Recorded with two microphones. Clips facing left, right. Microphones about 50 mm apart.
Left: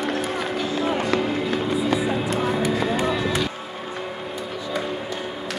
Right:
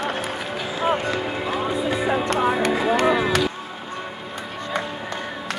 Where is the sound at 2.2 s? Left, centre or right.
Right.